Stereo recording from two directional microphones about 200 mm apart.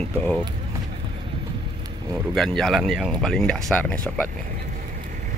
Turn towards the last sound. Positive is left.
turn(degrees=10)  # may be behind; listen again after turning